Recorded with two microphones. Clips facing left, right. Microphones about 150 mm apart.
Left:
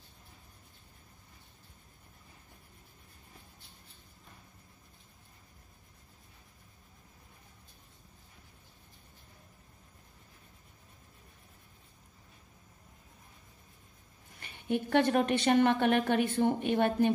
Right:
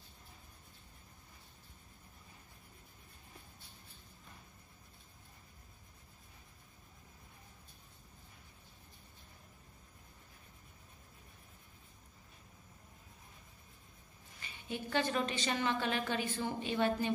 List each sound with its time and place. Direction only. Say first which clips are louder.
14.4 s a woman's voice: left 10 dB; 60° left (ahead or behind)